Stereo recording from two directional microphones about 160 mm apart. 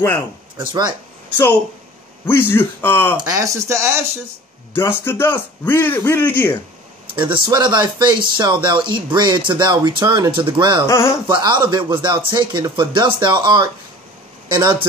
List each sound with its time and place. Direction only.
0.7 s speech: 25° right (ahead or behind)
2.2 s a man's voice: 15° left (ahead or behind)
3.2 s speech: 25° right (ahead or behind)
4.7 s a man's voice: 15° left (ahead or behind)
7.2 s speech: 30° right (ahead or behind)
10.9 s a man's voice: 15° left (ahead or behind)
11.2 s speech: 30° right (ahead or behind)